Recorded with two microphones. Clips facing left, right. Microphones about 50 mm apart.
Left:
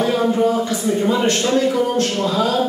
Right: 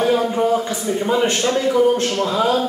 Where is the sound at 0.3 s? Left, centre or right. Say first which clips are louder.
Left 1 dB; centre.